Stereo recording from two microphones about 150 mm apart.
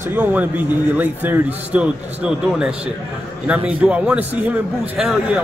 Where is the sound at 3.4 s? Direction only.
10° right (ahead or behind).